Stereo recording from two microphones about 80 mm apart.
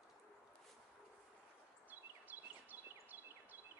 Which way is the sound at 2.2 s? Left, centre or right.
Right.